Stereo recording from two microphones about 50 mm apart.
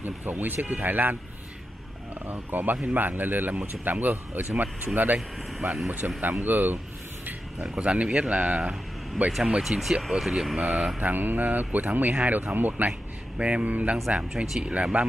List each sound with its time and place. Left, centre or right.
0.0 s speech: right
2.2 s speech: right
5.5 s speech: centre
6.4 s speech: right
7.7 s speech: right
9.6 s speech: centre
11.0 s speech: right
13.4 s speech: right
14.3 s speech: centre
14.6 s speech: right